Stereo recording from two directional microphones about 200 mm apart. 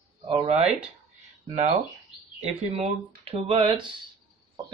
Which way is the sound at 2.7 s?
30° right (ahead or behind).